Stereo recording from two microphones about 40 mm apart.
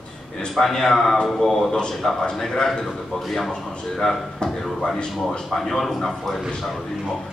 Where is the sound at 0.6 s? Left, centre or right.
Centre.